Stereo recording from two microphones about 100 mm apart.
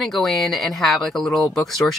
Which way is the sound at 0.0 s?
Centre (ahead or behind).